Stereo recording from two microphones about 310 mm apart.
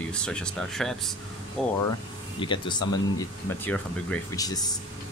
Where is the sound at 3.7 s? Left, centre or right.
Centre.